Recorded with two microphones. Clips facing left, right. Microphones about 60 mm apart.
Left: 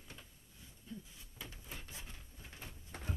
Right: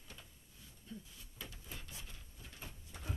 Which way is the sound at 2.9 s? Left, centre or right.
Left.